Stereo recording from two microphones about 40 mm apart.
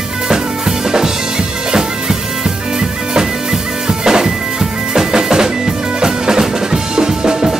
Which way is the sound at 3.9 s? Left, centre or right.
Centre.